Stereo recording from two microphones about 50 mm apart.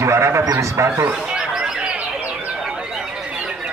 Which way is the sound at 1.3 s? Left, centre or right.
Centre.